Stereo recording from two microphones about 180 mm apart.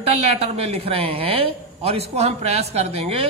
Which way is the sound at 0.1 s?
35° right (ahead or behind).